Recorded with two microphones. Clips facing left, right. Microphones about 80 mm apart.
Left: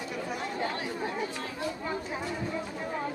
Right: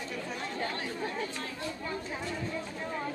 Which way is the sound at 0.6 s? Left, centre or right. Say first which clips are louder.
Left 1 dB; centre.